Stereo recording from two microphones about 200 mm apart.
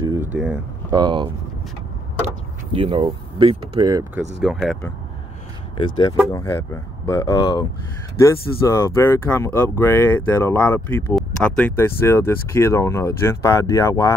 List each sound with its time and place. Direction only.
0.0 s a sound: 20° right (ahead or behind)
0.3 s speech: 5° right (ahead or behind)
0.8 s speech: 20° right (ahead or behind)
4.4 s speech: centre (ahead or behind)
5.8 s speech: 20° left (ahead or behind)
8.6 s speech: 15° left (ahead or behind)